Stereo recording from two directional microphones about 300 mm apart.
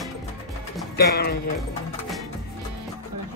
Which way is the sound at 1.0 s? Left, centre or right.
Left.